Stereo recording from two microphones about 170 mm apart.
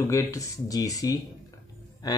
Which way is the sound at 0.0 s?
20° left (ahead or behind).